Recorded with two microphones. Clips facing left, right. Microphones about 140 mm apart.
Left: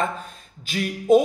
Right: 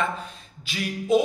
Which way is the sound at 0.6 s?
45° left (ahead or behind).